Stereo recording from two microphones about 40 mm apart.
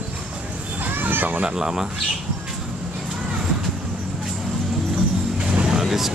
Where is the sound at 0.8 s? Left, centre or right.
Right.